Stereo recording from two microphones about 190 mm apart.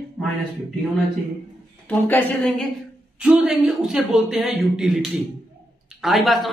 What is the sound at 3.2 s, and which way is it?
A woman's voice, 5° right (ahead or behind).